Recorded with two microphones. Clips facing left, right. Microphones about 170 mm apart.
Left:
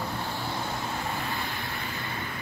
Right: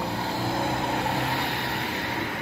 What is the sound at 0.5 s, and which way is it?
Vehicle, 60° right (ahead or behind).